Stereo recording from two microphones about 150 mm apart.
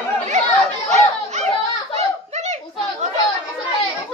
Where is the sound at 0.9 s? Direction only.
50° right (ahead or behind).